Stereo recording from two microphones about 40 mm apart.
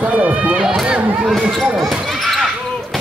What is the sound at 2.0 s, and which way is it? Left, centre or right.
Basketball bounce, centre.